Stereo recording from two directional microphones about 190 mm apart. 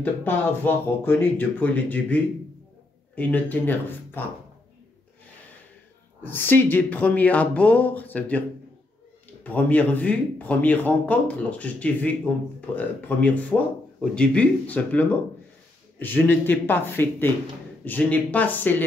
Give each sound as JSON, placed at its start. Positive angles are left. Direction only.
{"t": 0.0, "sound": "speech", "side_deg": 10}
{"t": 6.2, "sound": "speech", "side_deg": 10}